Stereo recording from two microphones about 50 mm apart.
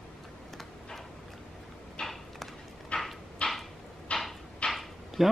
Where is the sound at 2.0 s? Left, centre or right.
Centre.